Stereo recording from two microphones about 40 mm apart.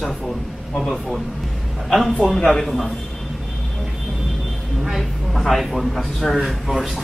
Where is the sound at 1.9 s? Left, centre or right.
Centre.